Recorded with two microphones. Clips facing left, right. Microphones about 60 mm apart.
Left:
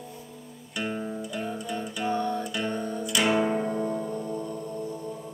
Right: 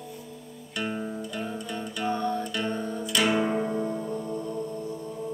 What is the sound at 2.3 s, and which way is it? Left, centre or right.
Music, centre.